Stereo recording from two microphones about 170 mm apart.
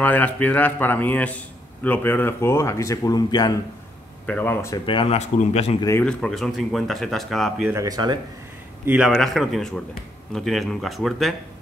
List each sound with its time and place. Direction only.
0.0 s a man's voice: 10° left (ahead or behind)
4.3 s a man's voice: 10° left (ahead or behind)
4.8 s speech: 35° left (ahead or behind)
6.0 s speech: 5° left (ahead or behind)
7.7 s speech: 20° right (ahead or behind)
8.8 s speech: 5° right (ahead or behind)